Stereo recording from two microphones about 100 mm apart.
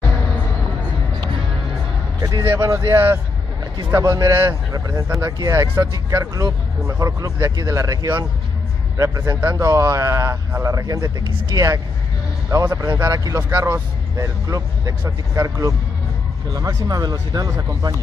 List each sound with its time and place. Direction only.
2.4 s speech: 25° right (ahead or behind)
3.9 s speech: 35° right (ahead or behind)
13.4 s speech: 25° right (ahead or behind)